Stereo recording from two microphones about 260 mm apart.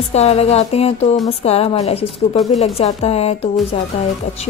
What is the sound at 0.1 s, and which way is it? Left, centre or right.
A woman's voice, left.